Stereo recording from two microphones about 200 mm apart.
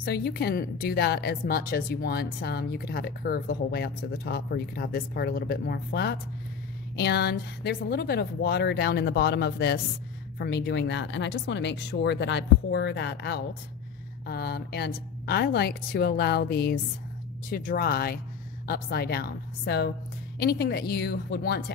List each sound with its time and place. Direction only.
0.0 s a woman's voice: 55° left (ahead or behind)